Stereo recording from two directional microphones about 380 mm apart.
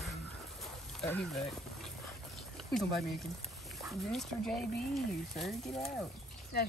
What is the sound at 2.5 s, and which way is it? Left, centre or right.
Speech, centre.